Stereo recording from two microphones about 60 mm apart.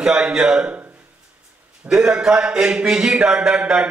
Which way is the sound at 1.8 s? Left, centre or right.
Centre.